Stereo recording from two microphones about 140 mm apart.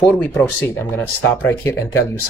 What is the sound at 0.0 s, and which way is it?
Speech, 15° left (ahead or behind).